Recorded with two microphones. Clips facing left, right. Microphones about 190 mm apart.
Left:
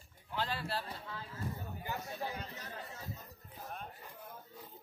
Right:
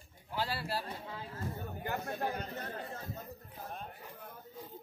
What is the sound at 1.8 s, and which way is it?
Speech, 60° right (ahead or behind).